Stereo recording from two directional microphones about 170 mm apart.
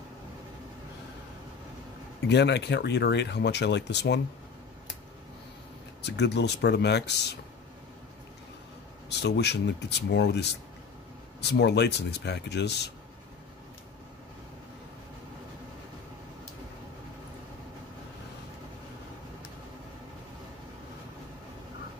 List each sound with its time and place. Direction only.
2.2 s speech: 90° left
6.0 s speech: 90° left
9.2 s speech: 85° left
11.5 s speech: 85° left